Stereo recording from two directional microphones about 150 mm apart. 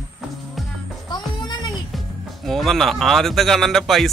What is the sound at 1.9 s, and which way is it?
Speech, centre (ahead or behind).